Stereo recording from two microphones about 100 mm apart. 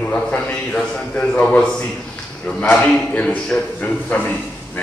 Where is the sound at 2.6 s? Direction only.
10° left (ahead or behind).